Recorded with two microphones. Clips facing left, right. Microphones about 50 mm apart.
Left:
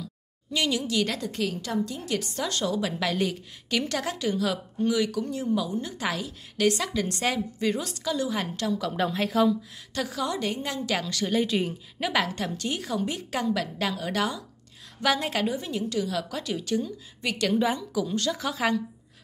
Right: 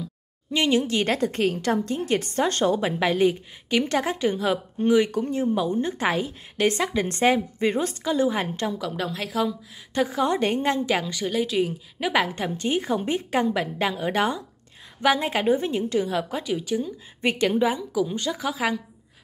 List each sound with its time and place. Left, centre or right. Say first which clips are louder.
0.0 s a woman's voice: right 4 dB; right
3.0 s a woman's voice: right 6 dB; right
8.9 s a woman's voice: left 2 dB; centre
9.9 s a woman's voice: right 7 dB; right
10.9 s a woman's voice: right 3 dB; centre
11.2 s a woman's voice: right 1 dB; centre
12.1 s a woman's voice: right 4 dB; centre
15.4 s a woman's voice: right 6 dB; right
16.4 s a woman's voice: right 2 dB; centre
17.2 s a woman's voice: right 5 dB; right
17.6 s a woman's voice: right 3 dB; centre